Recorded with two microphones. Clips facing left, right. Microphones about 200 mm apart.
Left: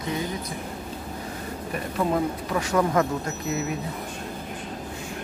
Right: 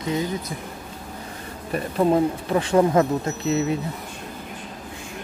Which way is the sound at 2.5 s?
30° right (ahead or behind).